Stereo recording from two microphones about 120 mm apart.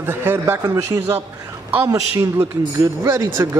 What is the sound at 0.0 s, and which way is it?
A man's voice, 20° right (ahead or behind).